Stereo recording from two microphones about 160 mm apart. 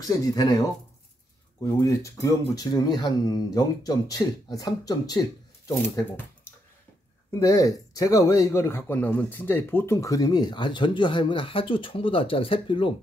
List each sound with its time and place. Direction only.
0.0 s speech: 20° left (ahead or behind)
1.8 s speech: 20° left (ahead or behind)
7.2 s speech: 20° left (ahead or behind)